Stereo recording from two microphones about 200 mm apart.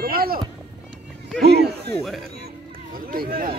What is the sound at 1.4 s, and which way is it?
Speech, 55° right (ahead or behind).